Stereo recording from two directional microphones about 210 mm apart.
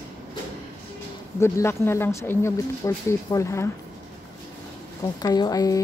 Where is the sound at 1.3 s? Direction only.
10° left (ahead or behind).